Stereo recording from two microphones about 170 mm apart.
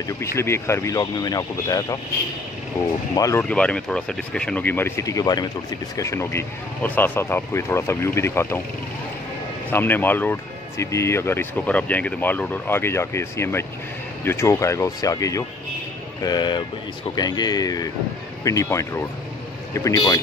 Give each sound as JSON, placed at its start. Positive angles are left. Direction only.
{"t": 0.2, "sound": "speech", "side_deg": 15}
{"t": 3.2, "sound": "speech", "side_deg": 20}
{"t": 3.4, "sound": "speech", "side_deg": 5}
{"t": 9.7, "sound": "a man's voice", "side_deg": 10}